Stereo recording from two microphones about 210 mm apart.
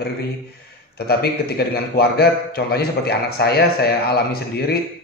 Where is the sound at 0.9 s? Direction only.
50° left (ahead or behind).